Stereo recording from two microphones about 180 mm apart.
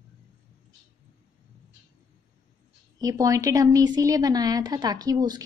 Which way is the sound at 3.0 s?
20° right (ahead or behind).